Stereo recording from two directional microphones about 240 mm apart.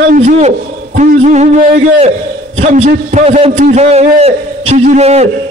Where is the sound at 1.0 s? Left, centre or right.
Right.